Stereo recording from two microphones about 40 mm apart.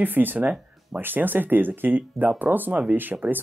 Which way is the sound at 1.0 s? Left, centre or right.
Right.